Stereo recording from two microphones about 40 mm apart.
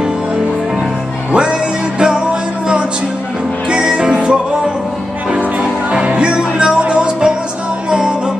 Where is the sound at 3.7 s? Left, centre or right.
Centre.